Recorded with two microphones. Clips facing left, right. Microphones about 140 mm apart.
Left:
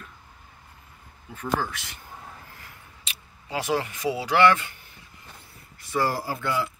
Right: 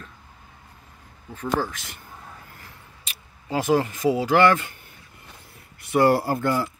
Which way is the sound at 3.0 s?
45° right (ahead or behind).